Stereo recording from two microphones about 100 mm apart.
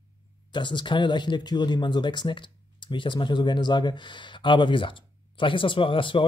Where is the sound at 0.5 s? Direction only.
50° left (ahead or behind).